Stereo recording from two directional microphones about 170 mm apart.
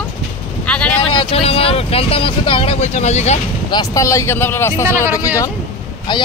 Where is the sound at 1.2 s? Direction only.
35° left (ahead or behind).